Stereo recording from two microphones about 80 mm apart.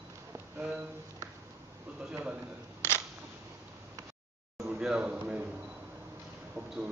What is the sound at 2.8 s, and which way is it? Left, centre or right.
Camera, left.